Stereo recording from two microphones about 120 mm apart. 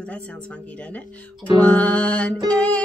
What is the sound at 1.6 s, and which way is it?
Music, 10° left (ahead or behind).